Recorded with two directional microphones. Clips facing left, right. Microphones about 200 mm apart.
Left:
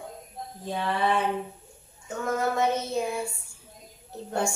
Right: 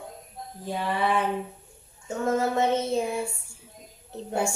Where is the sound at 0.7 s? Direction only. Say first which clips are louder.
Even; 10° right (ahead or behind).